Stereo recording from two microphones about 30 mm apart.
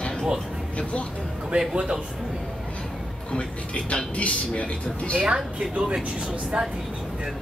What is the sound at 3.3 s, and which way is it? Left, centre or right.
Speech, left.